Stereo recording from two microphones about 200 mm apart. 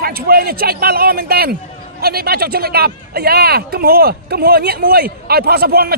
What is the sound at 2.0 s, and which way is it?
Speech, 50° right (ahead or behind).